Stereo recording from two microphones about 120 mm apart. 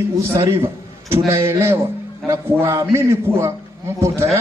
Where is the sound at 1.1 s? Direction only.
25° right (ahead or behind).